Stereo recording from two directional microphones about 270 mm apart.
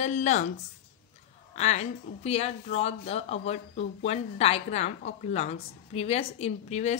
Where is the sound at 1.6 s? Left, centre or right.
Left.